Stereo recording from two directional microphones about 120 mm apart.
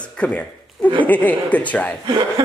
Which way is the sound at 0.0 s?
10° left (ahead or behind).